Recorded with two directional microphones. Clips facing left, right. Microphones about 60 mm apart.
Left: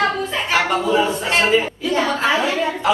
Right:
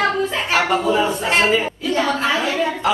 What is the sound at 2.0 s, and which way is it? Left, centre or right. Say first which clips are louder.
Speech: left 2 dB; centre.